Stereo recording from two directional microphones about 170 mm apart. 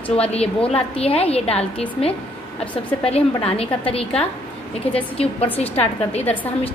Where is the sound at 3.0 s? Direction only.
35° left (ahead or behind).